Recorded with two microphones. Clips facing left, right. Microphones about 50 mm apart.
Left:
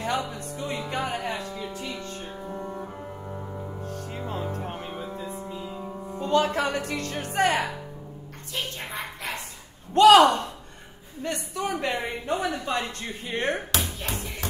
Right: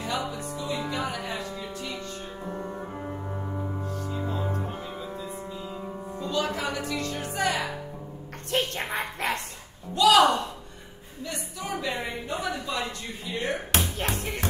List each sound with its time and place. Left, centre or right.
0.0 s music: left
1.6 s music: left
2.4 s music: right
4.6 s music: left
5.7 s music: centre
6.1 s music: left
8.5 s a sound: right
9.9 s speech: left
11.2 s a sound: left
13.9 s music: right